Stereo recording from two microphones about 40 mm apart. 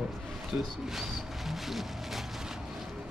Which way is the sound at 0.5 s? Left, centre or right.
Right.